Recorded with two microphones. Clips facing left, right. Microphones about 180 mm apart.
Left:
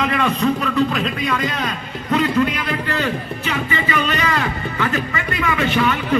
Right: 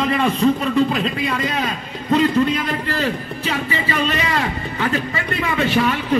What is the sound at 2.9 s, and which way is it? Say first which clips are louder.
Speech: even; 30° right (ahead or behind).